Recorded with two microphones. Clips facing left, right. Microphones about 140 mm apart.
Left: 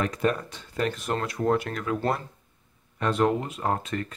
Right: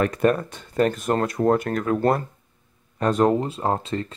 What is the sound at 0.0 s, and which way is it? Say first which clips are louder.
Speech: right 6 dB; 55° right (ahead or behind).